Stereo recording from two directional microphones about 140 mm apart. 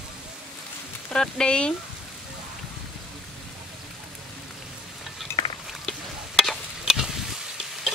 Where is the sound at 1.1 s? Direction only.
5° left (ahead or behind).